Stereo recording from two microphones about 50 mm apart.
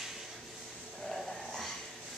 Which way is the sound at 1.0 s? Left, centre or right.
Centre.